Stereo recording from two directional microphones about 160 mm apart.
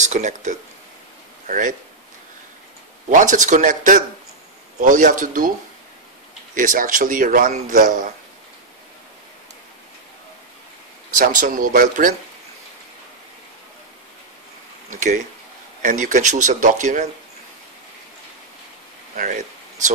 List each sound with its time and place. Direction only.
0.0 s speech: 50° right (ahead or behind)
3.1 s speech: 55° right (ahead or behind)
6.5 s speech: 55° right (ahead or behind)
11.1 s speech: 60° right (ahead or behind)
14.9 s speech: 55° right (ahead or behind)